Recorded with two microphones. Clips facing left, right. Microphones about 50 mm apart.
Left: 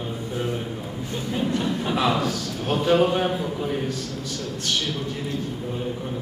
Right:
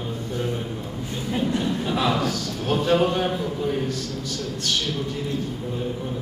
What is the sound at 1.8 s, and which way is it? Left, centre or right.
A man's voice, centre.